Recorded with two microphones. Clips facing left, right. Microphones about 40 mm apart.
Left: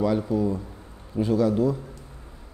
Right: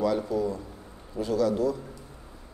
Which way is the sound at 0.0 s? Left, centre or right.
Centre.